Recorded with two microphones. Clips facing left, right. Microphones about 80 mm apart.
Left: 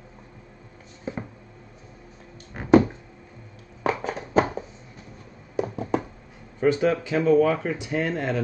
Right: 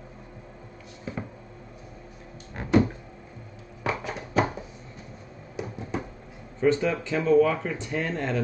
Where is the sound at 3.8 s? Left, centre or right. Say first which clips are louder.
Left 4 dB; left.